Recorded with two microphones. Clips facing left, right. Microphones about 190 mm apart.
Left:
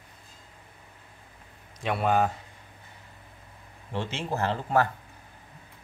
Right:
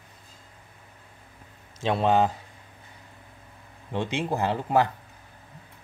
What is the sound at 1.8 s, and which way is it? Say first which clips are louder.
Speech: right 3 dB; 25° right (ahead or behind).